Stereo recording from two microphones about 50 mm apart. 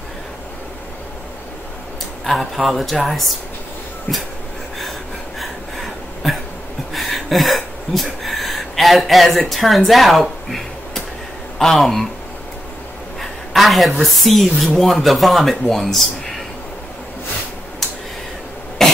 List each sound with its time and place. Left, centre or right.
2.2 s a woman's voice: centre
5.4 s a sound: centre
6.9 s speech: centre
13.5 s a woman's voice: centre
18.8 s cough: centre